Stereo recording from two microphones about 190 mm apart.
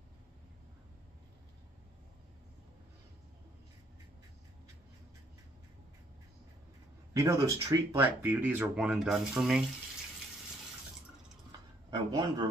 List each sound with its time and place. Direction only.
7.2 s speech: 15° right (ahead or behind)
11.9 s speech: 25° right (ahead or behind)